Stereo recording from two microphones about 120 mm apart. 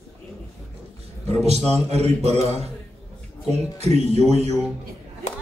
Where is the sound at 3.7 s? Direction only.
65° right (ahead or behind).